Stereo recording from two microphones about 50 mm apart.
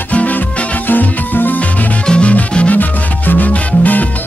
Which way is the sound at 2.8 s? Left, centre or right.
Left.